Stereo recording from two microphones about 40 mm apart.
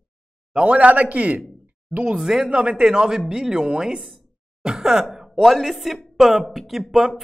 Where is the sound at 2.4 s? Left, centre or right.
Right.